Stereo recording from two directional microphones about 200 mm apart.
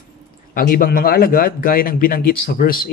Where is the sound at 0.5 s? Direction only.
45° left (ahead or behind).